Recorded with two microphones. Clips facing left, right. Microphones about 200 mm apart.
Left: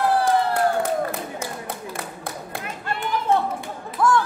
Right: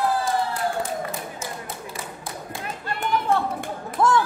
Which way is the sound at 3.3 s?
55° right (ahead or behind).